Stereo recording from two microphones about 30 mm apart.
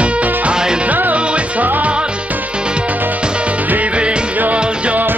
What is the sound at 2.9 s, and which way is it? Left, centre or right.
Music, right.